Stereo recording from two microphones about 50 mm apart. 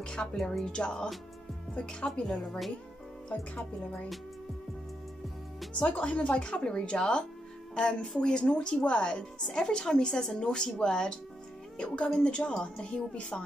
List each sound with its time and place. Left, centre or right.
0.0 s speech: centre
0.7 s speech: centre
2.2 s speech: centre
5.8 s speech: left